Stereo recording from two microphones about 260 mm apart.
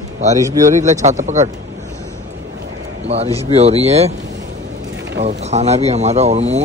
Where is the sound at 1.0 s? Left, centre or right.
Right.